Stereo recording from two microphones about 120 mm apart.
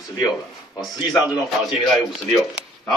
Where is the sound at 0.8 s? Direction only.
5° right (ahead or behind).